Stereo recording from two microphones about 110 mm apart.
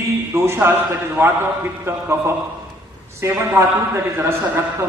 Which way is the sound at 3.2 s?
25° right (ahead or behind).